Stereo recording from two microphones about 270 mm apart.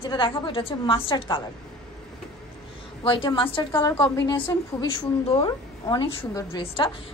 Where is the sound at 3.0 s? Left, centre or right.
Centre.